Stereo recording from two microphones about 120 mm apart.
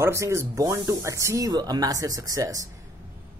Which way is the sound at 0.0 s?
25° right (ahead or behind).